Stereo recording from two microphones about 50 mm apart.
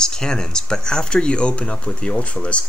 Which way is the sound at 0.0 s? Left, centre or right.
Centre.